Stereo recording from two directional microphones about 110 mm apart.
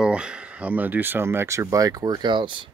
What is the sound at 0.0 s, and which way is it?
Speech, 10° right (ahead or behind).